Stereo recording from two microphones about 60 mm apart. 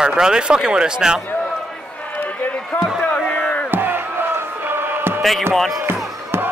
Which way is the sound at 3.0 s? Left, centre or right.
Left.